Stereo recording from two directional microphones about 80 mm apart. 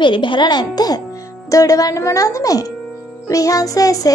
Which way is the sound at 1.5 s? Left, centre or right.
Left.